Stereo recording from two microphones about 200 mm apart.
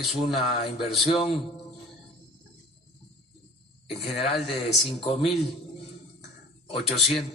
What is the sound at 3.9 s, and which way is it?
Speech, 30° left (ahead or behind).